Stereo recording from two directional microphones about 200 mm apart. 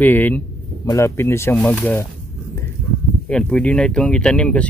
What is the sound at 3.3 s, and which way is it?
Speech, 5° left (ahead or behind).